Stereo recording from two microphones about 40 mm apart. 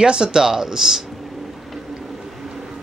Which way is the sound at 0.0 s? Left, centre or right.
Right.